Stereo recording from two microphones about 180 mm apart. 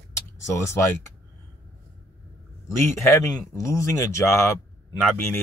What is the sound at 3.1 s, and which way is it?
Speech, 15° left (ahead or behind).